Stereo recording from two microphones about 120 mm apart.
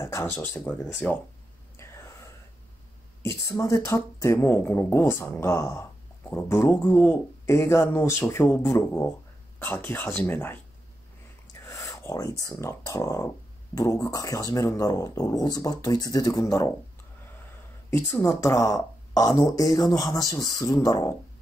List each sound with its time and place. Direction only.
0.0 s speech: 20° left (ahead or behind)
3.2 s speech: 20° left (ahead or behind)
11.7 s speech: 25° left (ahead or behind)
17.8 s speech: 15° left (ahead or behind)
18.4 s speech: 25° left (ahead or behind)